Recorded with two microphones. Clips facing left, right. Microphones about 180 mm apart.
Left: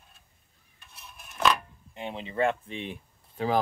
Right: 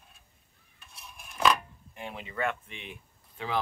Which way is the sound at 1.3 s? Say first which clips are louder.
Even; centre (ahead or behind).